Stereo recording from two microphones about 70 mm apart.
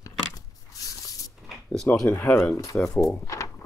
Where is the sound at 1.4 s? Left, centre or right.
Centre.